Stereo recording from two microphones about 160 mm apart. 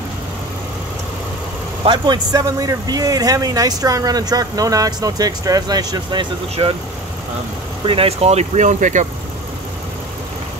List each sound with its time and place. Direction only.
1.9 s a man's voice: 25° right (ahead or behind)
7.8 s speech: 35° right (ahead or behind); by 9.0 s 50° right (ahead or behind)